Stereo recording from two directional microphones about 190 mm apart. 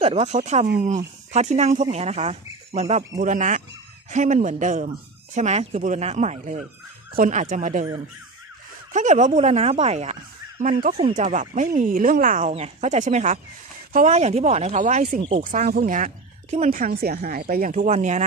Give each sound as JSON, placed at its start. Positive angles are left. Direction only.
{"t": 0.0, "sound": "speech", "side_deg": -35}
{"t": 8.9, "sound": "speech", "side_deg": -40}